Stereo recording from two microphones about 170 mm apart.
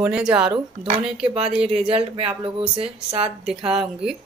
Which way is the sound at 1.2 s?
35° right (ahead or behind).